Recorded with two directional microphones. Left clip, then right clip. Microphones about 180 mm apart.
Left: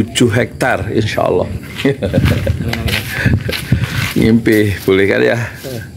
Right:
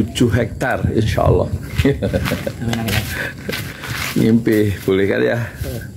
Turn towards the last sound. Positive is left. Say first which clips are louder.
# left 5 dB
turn(degrees=20)  # may be behind; listen again after turning